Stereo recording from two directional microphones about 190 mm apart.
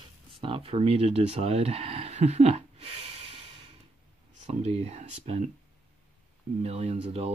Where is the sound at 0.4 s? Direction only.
30° right (ahead or behind).